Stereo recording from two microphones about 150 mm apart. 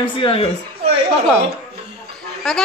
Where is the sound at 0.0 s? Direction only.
35° left (ahead or behind).